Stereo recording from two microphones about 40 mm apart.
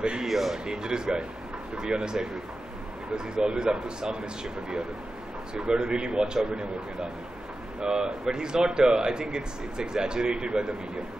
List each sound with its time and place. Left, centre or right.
0.0 s speech: right
0.3 s a man's voice: centre
0.7 s speech: centre
3.3 s speech: centre
5.5 s speech: right